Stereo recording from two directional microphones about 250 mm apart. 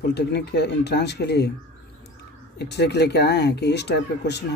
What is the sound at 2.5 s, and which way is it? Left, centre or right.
Speech, left.